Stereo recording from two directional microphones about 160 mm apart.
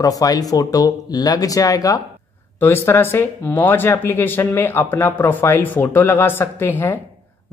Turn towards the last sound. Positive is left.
turn(degrees=10)  # may be behind; listen again after turning